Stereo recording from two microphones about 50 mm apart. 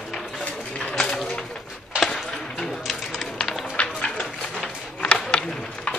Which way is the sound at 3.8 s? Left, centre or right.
Left.